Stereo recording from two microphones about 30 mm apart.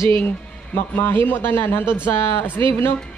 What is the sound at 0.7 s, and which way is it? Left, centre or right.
Speech, left.